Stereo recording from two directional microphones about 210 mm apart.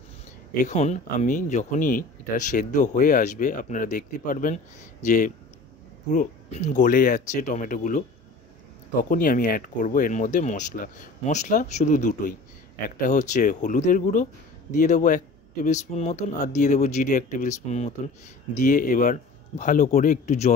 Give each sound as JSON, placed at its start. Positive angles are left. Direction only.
{"t": 0.7, "sound": "speech", "side_deg": 35}
{"t": 9.1, "sound": "speech", "side_deg": 40}